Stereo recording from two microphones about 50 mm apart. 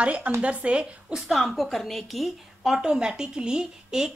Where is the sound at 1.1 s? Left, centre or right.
Centre.